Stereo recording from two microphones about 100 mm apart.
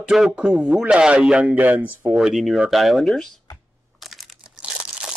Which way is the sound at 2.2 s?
5° right (ahead or behind).